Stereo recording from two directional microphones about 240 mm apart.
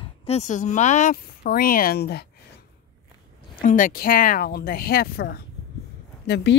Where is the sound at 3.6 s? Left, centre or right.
Left.